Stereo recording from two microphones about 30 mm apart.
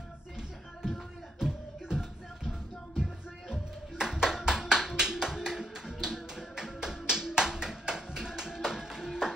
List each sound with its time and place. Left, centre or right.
1.4 s music: right
4.0 s hands: centre